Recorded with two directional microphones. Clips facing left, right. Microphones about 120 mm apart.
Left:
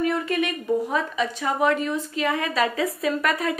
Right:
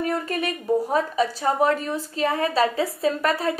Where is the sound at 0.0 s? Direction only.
40° right (ahead or behind).